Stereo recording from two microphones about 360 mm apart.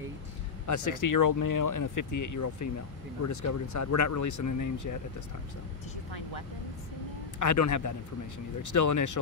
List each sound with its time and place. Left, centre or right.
0.7 s speech: left
7.3 s speech: left